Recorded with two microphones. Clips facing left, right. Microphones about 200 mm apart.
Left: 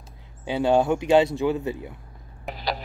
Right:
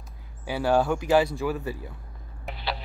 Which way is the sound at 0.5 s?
20° left (ahead or behind).